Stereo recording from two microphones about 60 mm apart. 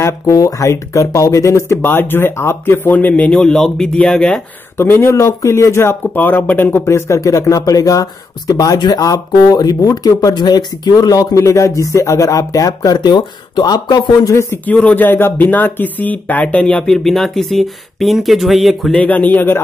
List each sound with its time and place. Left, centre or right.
0.0 s speech: left
1.8 s speech: left
3.3 s speech: centre
4.7 s speech: left
5.1 s speech: left
6.1 s speech: left
7.1 s speech: left
13.7 s speech: left
14.3 s speech: left
14.7 s speech: left
16.9 s speech: centre
18.9 s speech: left